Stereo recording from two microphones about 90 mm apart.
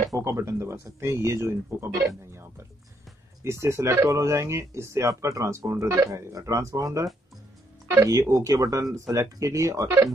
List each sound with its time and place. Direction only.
0.1 s speech: 35° right (ahead or behind)
8.1 s speech: 40° right (ahead or behind)